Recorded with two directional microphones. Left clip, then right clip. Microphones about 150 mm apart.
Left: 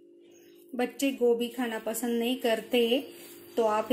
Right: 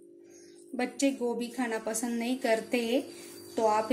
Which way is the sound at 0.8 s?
40° left (ahead or behind).